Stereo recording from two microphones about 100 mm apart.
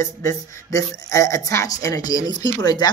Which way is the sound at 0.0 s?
30° left (ahead or behind).